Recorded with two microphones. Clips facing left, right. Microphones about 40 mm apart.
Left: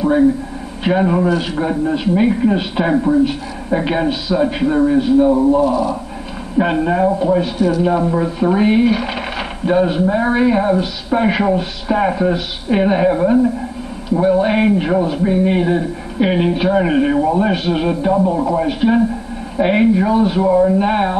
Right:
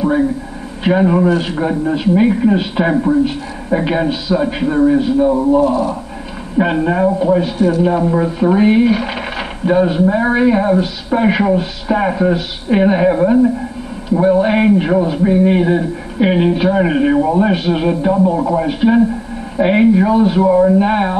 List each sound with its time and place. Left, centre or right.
0.8 s a man's voice: centre
5.6 s speech: centre
6.6 s a man's voice: centre